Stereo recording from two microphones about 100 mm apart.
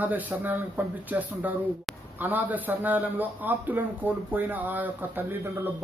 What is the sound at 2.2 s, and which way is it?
Speech, 15° right (ahead or behind).